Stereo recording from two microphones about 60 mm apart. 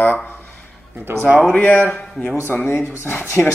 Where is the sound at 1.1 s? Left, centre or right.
Right.